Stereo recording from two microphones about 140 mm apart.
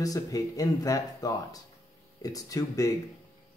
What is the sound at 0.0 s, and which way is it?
Speech, 25° left (ahead or behind).